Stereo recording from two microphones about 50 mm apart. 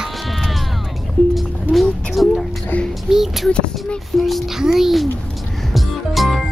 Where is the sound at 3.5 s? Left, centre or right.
Left.